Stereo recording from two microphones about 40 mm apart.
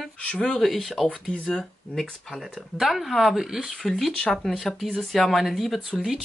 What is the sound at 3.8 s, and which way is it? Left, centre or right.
Speech, centre.